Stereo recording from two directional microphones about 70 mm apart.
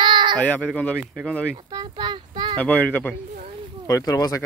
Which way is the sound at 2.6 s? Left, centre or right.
Left.